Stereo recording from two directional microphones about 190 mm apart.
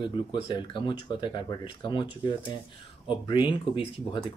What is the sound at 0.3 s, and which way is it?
Speech, 25° left (ahead or behind).